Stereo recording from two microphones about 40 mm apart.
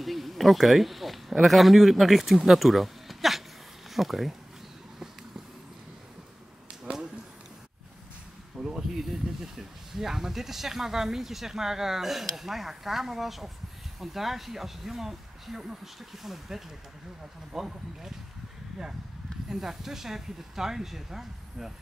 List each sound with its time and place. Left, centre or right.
0.0 s speech: centre
6.8 s a sound: centre
8.5 s speech: centre
19.5 s speech: centre